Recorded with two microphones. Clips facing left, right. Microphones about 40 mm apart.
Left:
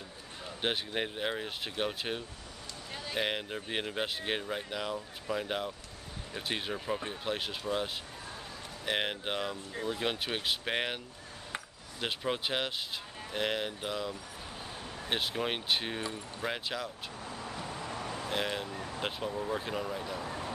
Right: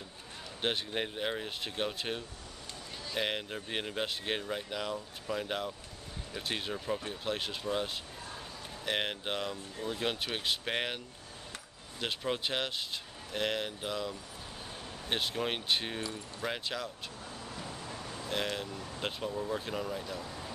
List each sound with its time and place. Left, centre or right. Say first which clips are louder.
0.6 s speech: even; centre
12.0 s speech: left 1 dB; centre
17.3 s vehicle: left 4 dB; left
18.3 s speech: even; centre
20.2 s a sound: left 5 dB; left